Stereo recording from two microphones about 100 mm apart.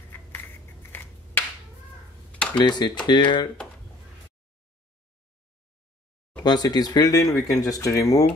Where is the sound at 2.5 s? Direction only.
45° left (ahead or behind).